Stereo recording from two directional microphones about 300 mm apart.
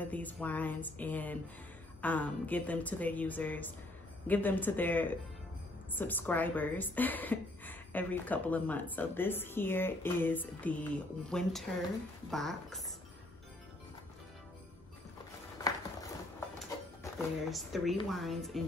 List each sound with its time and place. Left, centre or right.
0.0 s a woman's voice: centre
15.6 s a sound: centre
17.5 s a woman's voice: centre